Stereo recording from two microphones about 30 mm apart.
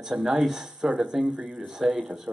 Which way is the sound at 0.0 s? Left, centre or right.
Centre.